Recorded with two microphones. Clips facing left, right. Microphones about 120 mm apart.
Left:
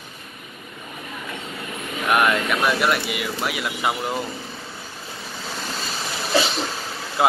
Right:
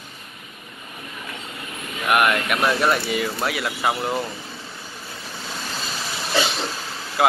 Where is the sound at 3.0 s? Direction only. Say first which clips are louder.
Right 2 dB; 15° left (ahead or behind).